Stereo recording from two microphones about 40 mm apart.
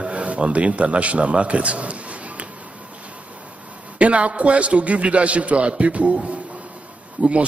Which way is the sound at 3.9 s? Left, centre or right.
Right.